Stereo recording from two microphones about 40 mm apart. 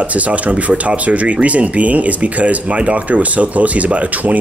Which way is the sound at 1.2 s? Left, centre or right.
Right.